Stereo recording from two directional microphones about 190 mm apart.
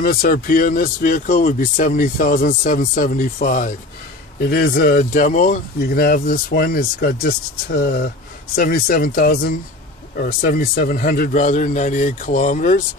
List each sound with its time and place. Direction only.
0.0 s a man's voice: 50° left (ahead or behind)